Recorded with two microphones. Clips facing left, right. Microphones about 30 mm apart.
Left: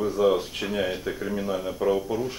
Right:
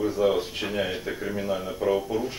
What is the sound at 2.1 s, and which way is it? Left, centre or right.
Speech, centre.